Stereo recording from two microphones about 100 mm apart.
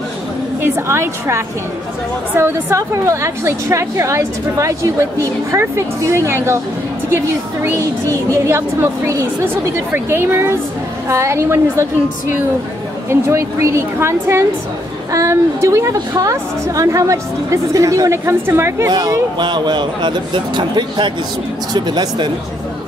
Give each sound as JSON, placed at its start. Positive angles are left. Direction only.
{"t": 0.6, "sound": "a woman's voice", "side_deg": -25}
{"t": 7.7, "sound": "a woman's voice", "side_deg": -30}
{"t": 18.9, "sound": "speech", "side_deg": -45}